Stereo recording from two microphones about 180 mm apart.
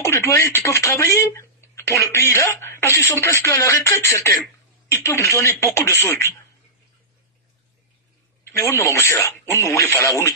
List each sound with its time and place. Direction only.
0.0 s speech: 15° left (ahead or behind)
8.5 s speech: 15° left (ahead or behind)